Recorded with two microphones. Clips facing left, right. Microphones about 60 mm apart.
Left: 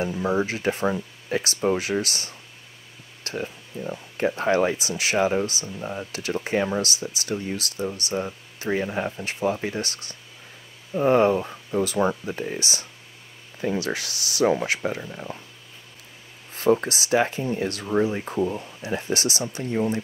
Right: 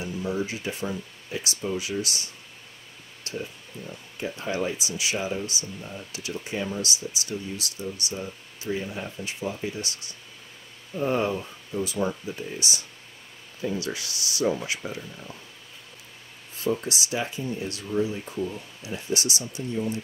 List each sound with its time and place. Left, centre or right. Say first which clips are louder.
0.0 s speech: left 5 dB; left
3.3 s speech: left 4 dB; left
10.9 s speech: left 7 dB; left
14.8 s speech: left 7 dB; left
16.8 s speech: left 7 dB; left